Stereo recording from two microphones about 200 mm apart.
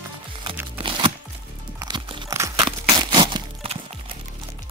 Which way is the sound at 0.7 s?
25° right (ahead or behind).